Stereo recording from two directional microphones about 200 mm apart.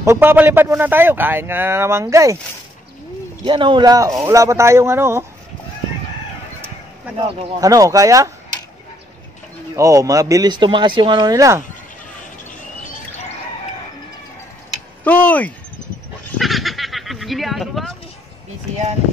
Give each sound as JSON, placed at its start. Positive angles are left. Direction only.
{"t": 0.0, "sound": "speech", "side_deg": -10}
{"t": 3.4, "sound": "speech", "side_deg": -25}
{"t": 7.2, "sound": "speech", "side_deg": -20}
{"t": 9.8, "sound": "speech", "side_deg": -15}
{"t": 14.7, "sound": "a sound", "side_deg": 10}